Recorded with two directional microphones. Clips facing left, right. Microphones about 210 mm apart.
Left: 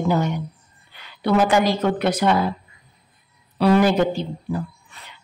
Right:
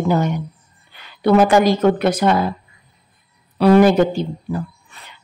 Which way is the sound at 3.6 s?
50° right (ahead or behind).